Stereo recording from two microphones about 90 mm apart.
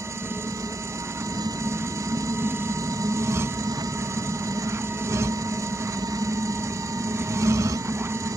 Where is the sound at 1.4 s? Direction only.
35° right (ahead or behind).